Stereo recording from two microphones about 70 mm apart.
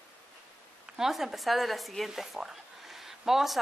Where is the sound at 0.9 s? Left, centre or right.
Centre.